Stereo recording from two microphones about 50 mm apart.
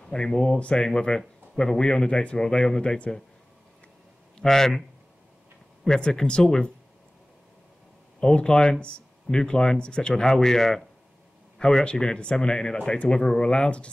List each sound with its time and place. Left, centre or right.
0.1 s speech: centre
4.4 s speech: centre
5.9 s speech: centre
8.2 s speech: centre